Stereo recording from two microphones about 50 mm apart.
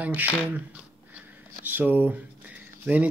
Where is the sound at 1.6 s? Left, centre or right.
Right.